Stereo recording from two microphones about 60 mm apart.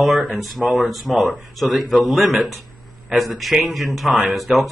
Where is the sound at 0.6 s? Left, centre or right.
Centre.